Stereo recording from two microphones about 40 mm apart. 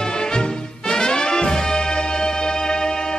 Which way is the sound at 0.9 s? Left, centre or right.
Centre.